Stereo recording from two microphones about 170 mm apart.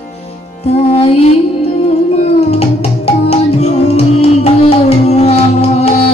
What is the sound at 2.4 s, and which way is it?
Music, 35° left (ahead or behind).